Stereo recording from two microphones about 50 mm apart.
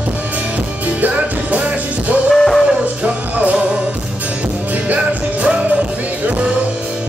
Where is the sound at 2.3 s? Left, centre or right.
Centre.